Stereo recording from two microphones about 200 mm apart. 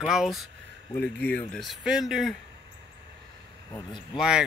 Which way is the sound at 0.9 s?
10° left (ahead or behind).